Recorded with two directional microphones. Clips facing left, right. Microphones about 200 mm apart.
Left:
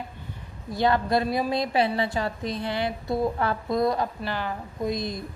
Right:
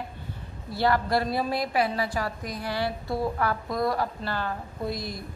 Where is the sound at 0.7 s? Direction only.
20° left (ahead or behind).